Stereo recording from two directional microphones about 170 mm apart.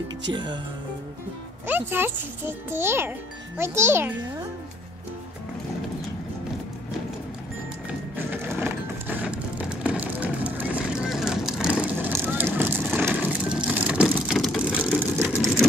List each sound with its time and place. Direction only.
0.3 s speech: 25° right (ahead or behind)
1.7 s a child's voice: 10° right (ahead or behind)
8.2 s a sound: 10° right (ahead or behind)
11.8 s vehicle: 10° right (ahead or behind)